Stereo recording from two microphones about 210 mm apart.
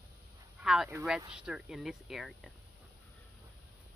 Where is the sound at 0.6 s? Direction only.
5° right (ahead or behind).